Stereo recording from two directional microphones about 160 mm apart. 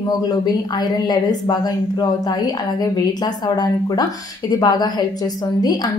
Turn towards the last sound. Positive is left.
turn(degrees=25)  # may be behind; listen again after turning